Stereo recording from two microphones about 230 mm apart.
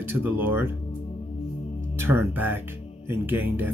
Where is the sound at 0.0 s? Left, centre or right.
Centre.